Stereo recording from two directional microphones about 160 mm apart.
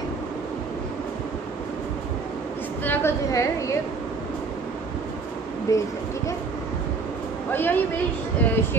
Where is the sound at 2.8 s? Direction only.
15° left (ahead or behind).